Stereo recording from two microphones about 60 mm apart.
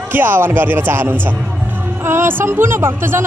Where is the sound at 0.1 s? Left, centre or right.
Right.